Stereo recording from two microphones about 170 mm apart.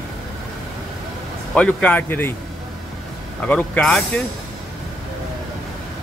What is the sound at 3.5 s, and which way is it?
Speech, 5° left (ahead or behind).